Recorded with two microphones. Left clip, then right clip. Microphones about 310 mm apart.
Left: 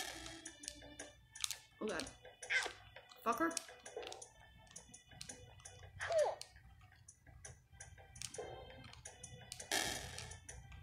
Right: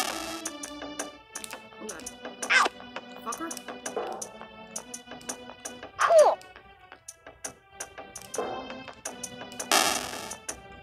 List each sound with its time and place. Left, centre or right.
0.0 s music: right
3.3 s speech: centre
3.8 s music: right
7.4 s music: right